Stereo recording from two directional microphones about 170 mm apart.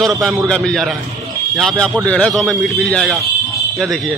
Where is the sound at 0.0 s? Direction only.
Centre (ahead or behind).